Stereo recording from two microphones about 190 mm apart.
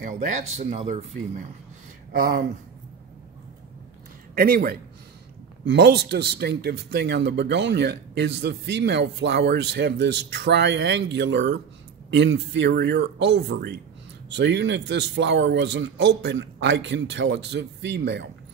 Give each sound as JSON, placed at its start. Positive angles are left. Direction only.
{"t": 0.0, "sound": "a man's voice", "side_deg": -45}
{"t": 4.4, "sound": "a man's voice", "side_deg": -55}